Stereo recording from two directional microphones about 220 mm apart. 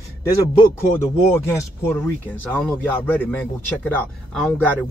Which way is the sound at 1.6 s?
10° left (ahead or behind).